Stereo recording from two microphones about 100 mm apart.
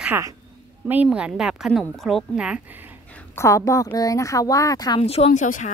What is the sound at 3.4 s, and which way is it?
Speech, 30° left (ahead or behind).